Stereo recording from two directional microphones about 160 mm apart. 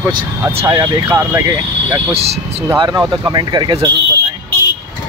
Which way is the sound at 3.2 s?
25° right (ahead or behind).